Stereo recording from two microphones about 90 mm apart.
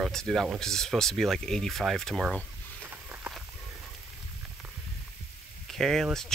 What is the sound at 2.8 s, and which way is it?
Walk, 25° right (ahead or behind).